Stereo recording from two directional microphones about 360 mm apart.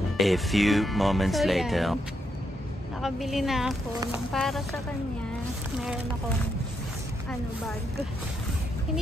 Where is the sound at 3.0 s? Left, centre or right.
Centre.